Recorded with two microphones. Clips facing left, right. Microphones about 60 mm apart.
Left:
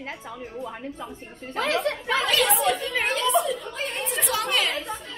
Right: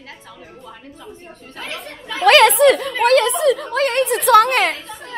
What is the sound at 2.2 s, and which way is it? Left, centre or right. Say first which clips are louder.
Speech: right 14 dB; right.